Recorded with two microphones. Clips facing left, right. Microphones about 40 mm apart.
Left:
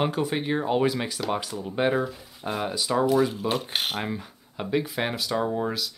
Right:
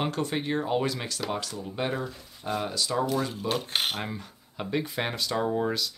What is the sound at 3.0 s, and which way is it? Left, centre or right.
Speech, centre.